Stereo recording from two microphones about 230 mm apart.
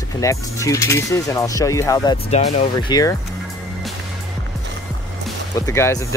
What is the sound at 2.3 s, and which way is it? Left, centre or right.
Speech, left.